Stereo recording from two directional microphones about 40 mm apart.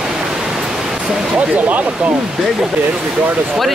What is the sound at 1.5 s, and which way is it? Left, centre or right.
Speech, right.